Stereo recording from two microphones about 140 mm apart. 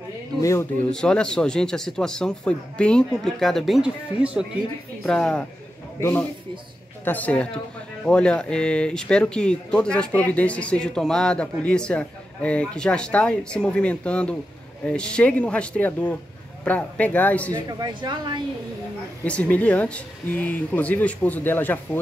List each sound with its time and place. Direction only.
0.4 s speech: 20° left (ahead or behind)
0.8 s speech: 5° left (ahead or behind)
5.0 s speech: 5° left (ahead or behind)
5.9 s speech: 20° left (ahead or behind)
17.5 s speech: 25° right (ahead or behind)
19.2 s speech: 10° left (ahead or behind)